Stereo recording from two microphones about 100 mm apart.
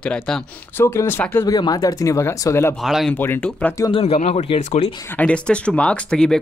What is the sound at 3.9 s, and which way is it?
Speech, 75° left (ahead or behind).